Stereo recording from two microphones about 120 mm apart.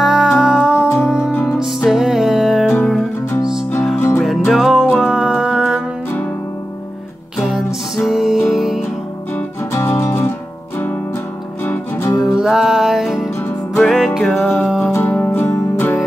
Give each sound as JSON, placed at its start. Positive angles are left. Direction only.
{"t": 0.0, "sound": "music", "side_deg": -5}
{"t": 0.8, "sound": "music", "side_deg": 10}
{"t": 1.6, "sound": "music", "side_deg": 0}
{"t": 4.2, "sound": "music", "side_deg": 0}
{"t": 7.3, "sound": "music", "side_deg": 0}
{"t": 9.7, "sound": "music", "side_deg": 20}
{"t": 11.6, "sound": "music", "side_deg": 20}
{"t": 12.4, "sound": "music", "side_deg": -5}
{"t": 14.8, "sound": "music", "side_deg": 20}